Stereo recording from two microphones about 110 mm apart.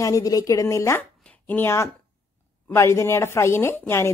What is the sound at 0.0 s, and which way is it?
A woman's voice, 30° left (ahead or behind).